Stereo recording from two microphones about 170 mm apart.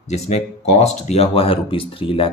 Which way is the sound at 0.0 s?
40° left (ahead or behind).